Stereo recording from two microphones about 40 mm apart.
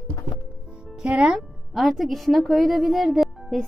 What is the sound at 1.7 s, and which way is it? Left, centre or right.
A woman's voice, centre.